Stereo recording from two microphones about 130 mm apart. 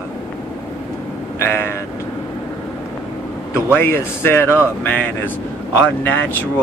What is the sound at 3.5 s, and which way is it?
A man's voice, 20° left (ahead or behind).